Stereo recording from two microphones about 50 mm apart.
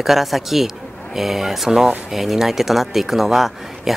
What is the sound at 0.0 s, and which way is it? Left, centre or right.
A man's voice, centre.